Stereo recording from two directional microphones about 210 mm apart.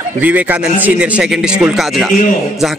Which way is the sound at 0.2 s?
5° right (ahead or behind).